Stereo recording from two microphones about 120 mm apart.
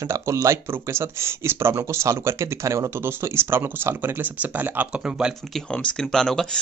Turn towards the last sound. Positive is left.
turn(degrees=5)  # may be behind; listen again after turning